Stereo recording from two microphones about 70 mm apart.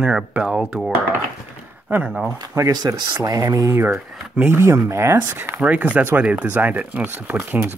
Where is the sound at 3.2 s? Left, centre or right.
Right.